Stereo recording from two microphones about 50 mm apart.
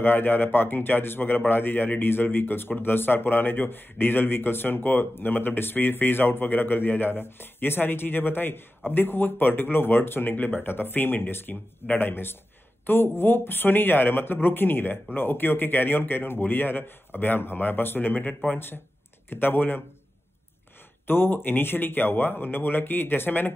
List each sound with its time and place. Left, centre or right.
0.0 s a man's voice: left
21.1 s a man's voice: left